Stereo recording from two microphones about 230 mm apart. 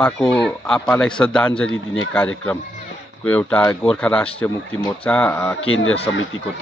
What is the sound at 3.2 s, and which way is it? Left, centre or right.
A man's voice, centre.